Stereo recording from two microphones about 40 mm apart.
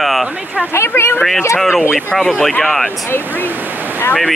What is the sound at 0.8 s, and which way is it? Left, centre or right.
Speech, left.